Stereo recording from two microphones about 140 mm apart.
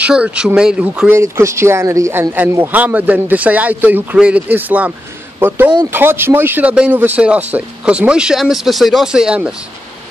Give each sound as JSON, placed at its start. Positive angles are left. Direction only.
{"t": 0.0, "sound": "speech", "side_deg": -10}
{"t": 1.1, "sound": "speech", "side_deg": -20}